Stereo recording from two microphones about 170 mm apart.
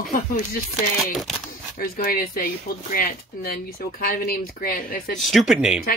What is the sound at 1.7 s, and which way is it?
Speech, 60° left (ahead or behind).